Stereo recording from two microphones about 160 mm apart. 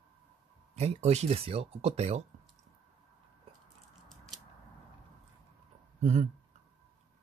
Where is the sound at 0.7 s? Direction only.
40° right (ahead or behind).